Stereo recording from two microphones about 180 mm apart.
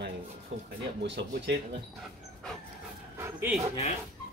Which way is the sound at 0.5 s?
90° right.